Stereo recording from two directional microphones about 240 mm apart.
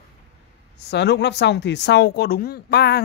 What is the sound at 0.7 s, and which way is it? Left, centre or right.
Speech, left.